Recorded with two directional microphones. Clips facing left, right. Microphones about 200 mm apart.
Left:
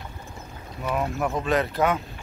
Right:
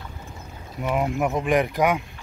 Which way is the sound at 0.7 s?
15° right (ahead or behind).